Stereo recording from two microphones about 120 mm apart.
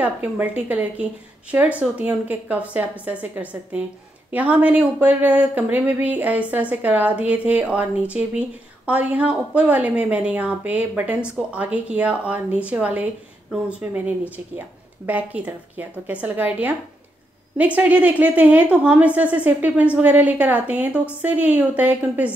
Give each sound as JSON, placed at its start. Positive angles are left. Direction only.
{"t": 0.0, "sound": "speech", "side_deg": -10}
{"t": 17.7, "sound": "speech", "side_deg": -15}